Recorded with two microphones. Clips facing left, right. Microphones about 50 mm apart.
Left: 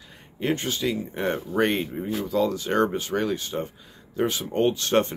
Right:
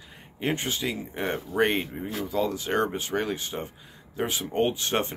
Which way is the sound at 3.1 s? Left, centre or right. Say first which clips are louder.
Left 3 dB; right.